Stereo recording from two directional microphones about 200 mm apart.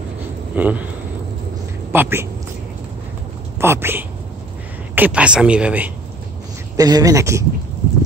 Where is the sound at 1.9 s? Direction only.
10° right (ahead or behind).